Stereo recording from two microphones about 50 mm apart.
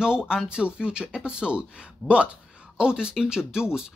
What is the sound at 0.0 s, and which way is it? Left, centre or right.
Speech, centre.